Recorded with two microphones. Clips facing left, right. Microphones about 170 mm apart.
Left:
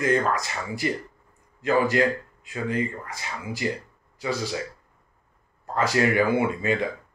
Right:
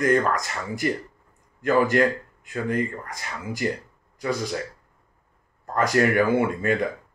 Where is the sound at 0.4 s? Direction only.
50° right (ahead or behind).